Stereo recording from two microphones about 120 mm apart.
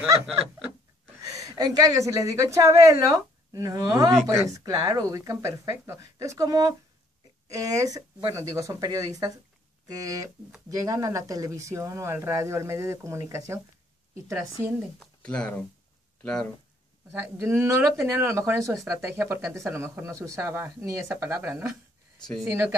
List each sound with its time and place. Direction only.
1.2 s a woman's voice: 30° right (ahead or behind)
15.0 s speech: 5° left (ahead or behind)
17.1 s speech: 20° right (ahead or behind)